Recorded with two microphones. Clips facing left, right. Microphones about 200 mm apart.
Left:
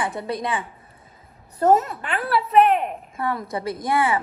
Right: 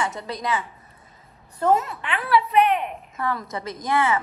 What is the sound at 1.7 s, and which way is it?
A woman's voice, 50° left (ahead or behind).